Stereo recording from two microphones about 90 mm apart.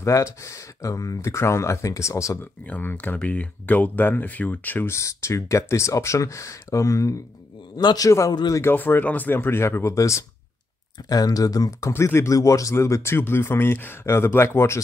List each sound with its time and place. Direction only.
0.0 s speech: 35° left (ahead or behind)
2.6 s a man's voice: 20° left (ahead or behind); by 8.1 s 45° left (ahead or behind)
8.1 s speech: 35° left (ahead or behind)
8.5 s speech: 25° left (ahead or behind); by 11.9 s 40° left (ahead or behind)
11.9 s speech: 30° left (ahead or behind)